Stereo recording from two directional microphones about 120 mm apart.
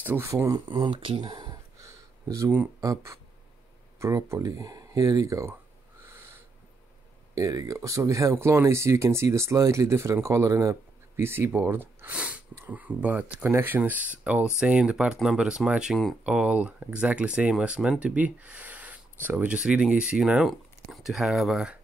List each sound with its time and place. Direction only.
0.0 s speech: 20° right (ahead or behind)
0.7 s speech: 40° right (ahead or behind)
1.3 s a sound: 30° right (ahead or behind)
2.8 s speech: 30° right (ahead or behind)
7.3 s speech: 30° right (ahead or behind); by 21.7 s 5° right (ahead or behind)